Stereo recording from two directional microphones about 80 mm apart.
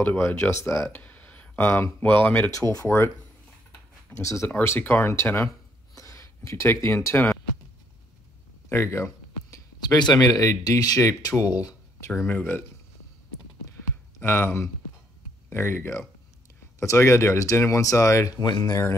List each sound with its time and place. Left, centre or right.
0.0 s speech: left
0.6 s speech: left
0.9 s speech: left
2.9 s speech: left
4.2 s speech: left
4.5 s speech: left
8.6 s a sound: left
9.8 s speech: left
12.3 s speech: left
14.2 s speech: left
18.4 s speech: left